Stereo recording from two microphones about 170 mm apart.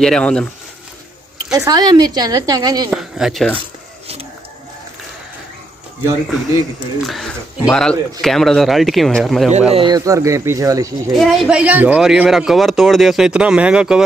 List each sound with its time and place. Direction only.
0.0 s a man's voice: 5° left (ahead or behind)
1.5 s speech: 20° right (ahead or behind)
2.9 s a man's voice: 5° right (ahead or behind)
7.1 s a man's voice: centre (ahead or behind)
9.7 s speech: 30° right (ahead or behind)
11.1 s a man's voice: centre (ahead or behind)